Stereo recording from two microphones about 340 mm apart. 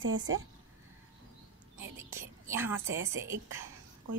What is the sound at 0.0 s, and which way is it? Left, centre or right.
Speech, right.